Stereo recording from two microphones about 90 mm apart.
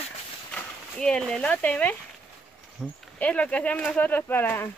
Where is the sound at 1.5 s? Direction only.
15° left (ahead or behind).